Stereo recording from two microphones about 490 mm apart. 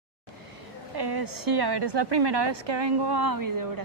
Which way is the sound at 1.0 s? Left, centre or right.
Right.